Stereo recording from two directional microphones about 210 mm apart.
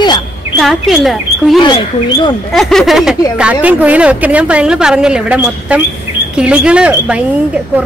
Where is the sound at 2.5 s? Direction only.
Centre (ahead or behind).